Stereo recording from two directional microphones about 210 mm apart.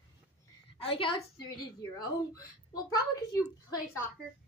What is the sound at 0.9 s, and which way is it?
A woman's voice, 25° left (ahead or behind).